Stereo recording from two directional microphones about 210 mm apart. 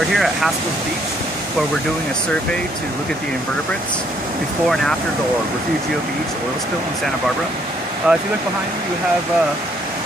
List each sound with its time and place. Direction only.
0.1 s speech: centre (ahead or behind)
8.1 s speech: 5° right (ahead or behind)